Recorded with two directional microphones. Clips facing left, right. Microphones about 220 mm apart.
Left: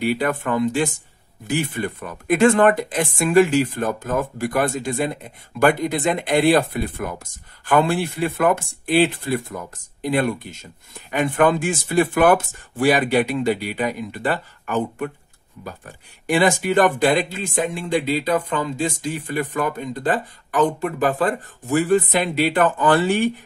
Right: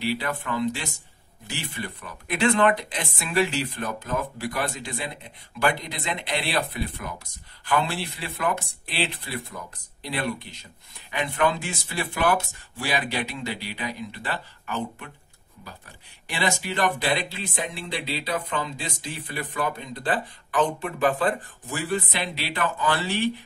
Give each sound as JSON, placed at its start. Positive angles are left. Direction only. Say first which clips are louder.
{"t": 0.0, "sound": "speech", "louder": "left 7 dB", "side_deg": 50}